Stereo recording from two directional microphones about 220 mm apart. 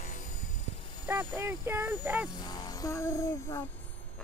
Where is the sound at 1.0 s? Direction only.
10° right (ahead or behind).